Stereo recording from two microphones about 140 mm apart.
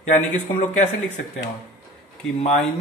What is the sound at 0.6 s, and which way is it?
Speech, 60° left (ahead or behind).